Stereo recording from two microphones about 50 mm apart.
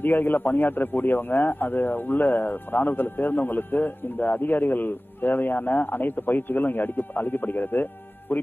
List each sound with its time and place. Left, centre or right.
0.0 s a man's voice: left